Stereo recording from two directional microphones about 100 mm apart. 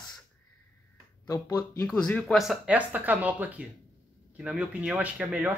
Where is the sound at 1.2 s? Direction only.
35° left (ahead or behind).